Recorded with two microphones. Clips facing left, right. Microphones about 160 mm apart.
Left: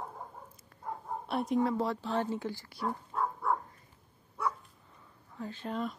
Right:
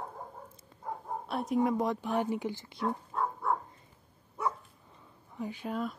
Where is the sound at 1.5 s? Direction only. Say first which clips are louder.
Right 3 dB; 15° right (ahead or behind).